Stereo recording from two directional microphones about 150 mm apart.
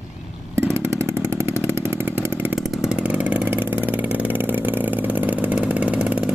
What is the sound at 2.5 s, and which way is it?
Vehicle, centre (ahead or behind).